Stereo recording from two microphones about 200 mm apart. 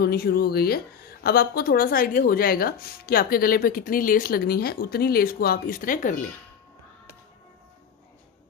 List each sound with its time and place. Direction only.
0.0 s a woman's voice: 50° left (ahead or behind)